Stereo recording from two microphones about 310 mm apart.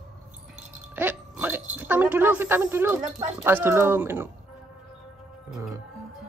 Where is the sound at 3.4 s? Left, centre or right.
Centre.